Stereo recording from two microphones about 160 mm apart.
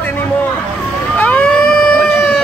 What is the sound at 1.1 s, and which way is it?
Cat, 10° left (ahead or behind).